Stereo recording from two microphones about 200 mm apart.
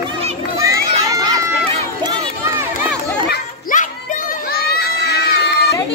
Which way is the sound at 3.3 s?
45° left (ahead or behind).